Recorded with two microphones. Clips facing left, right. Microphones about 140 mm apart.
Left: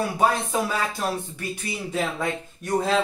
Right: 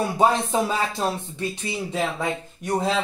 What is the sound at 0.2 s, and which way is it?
Speech, 25° right (ahead or behind).